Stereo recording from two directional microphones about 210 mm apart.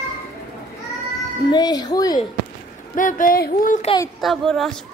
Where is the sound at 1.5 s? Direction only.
20° left (ahead or behind).